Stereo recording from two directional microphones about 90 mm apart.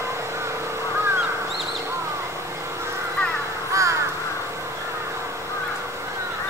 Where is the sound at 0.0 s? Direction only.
30° right (ahead or behind).